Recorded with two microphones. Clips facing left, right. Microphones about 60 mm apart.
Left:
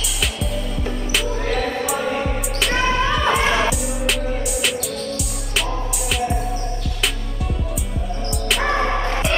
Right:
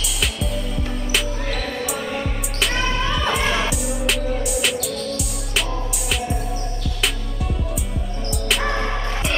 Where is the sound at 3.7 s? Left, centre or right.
Centre.